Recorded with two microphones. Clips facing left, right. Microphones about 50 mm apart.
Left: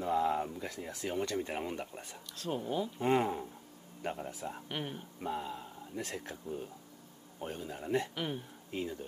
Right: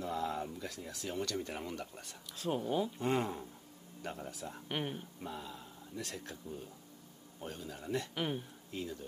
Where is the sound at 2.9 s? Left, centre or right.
Centre.